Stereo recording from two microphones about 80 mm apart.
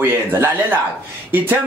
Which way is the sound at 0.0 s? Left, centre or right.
Right.